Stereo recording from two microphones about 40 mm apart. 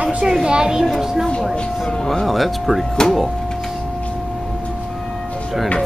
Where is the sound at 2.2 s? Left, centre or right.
Centre.